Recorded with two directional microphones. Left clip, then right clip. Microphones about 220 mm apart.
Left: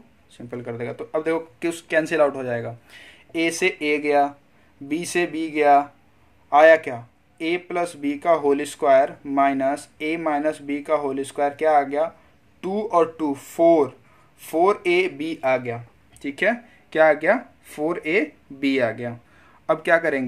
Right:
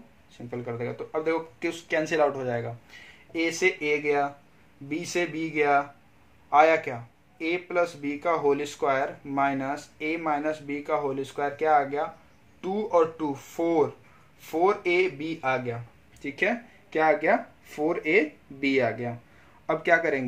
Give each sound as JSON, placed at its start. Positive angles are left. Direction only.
{"t": 0.3, "sound": "speech", "side_deg": 35}